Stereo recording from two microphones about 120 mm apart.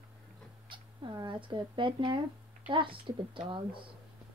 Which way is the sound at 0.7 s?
40° right (ahead or behind).